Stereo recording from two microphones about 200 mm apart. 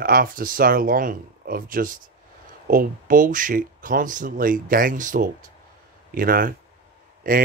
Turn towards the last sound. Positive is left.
turn(degrees=-45)  # may be behind; listen again after turning